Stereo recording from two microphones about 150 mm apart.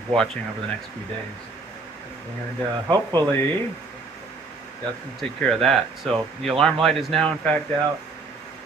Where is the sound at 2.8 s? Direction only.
25° right (ahead or behind).